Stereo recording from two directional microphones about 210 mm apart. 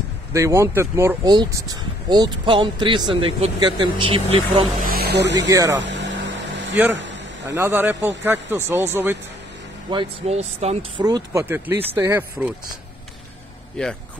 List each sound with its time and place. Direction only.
0.3 s speech: 15° right (ahead or behind)
4.8 s speech: 45° right (ahead or behind)
5.5 s speech: 15° right (ahead or behind)
5.8 s vehicle: 60° right (ahead or behind)
7.0 s a sound: 60° right (ahead or behind)
7.4 s speech: 10° right (ahead or behind)
9.8 s speech: 25° right (ahead or behind); by 12.5 s 10° right (ahead or behind)
13.8 s speech: 5° left (ahead or behind)